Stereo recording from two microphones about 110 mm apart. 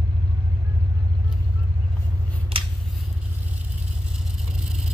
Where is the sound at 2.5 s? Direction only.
55° right (ahead or behind).